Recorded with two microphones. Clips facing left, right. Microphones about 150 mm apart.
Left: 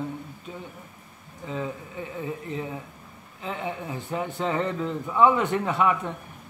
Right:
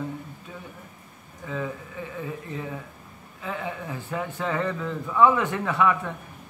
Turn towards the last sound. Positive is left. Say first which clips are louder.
# even
turn(degrees=20)  # may be behind; listen again after turning